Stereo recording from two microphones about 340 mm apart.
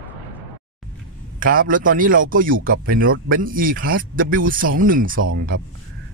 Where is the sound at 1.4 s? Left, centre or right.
Right.